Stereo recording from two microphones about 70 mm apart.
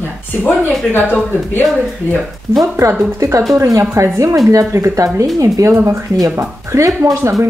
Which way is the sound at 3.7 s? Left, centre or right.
Right.